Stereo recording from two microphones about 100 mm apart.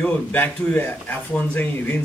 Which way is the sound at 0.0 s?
15° left (ahead or behind).